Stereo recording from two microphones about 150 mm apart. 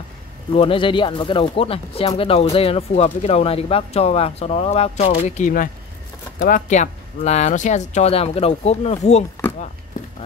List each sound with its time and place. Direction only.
0.6 s speech: 35° left (ahead or behind)
6.4 s speech: 55° left (ahead or behind)